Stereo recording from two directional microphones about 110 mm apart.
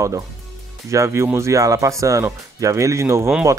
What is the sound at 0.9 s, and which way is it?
Speech, 25° right (ahead or behind).